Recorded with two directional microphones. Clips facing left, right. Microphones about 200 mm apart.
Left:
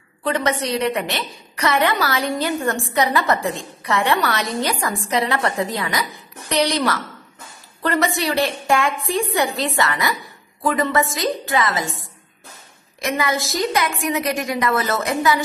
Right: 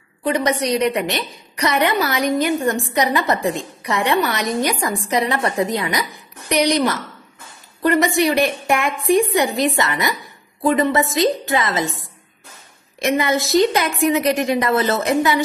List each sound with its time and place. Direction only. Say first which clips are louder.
0.2 s a woman's voice: right 2 dB; 15° right (ahead or behind)
13.0 s a woman's voice: right 4 dB; 25° right (ahead or behind)